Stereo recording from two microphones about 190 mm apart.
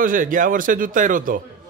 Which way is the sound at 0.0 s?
45° right (ahead or behind).